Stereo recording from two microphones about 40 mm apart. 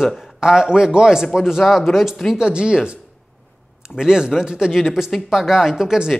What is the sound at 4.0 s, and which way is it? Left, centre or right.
A woman's voice, centre.